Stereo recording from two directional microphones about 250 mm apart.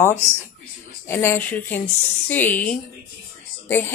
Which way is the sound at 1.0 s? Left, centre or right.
Centre.